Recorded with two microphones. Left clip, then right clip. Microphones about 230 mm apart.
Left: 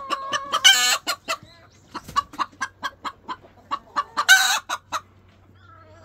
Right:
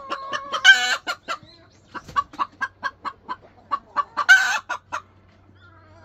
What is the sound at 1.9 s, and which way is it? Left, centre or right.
Chicken, left.